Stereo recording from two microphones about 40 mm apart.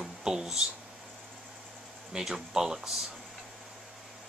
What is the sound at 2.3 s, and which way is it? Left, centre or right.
Speech, centre.